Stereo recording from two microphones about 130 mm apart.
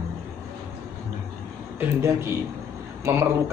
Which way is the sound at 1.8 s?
20° right (ahead or behind).